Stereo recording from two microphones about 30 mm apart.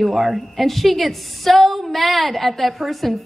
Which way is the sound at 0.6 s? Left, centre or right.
Centre.